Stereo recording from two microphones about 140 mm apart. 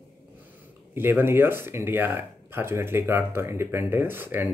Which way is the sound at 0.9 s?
15° right (ahead or behind).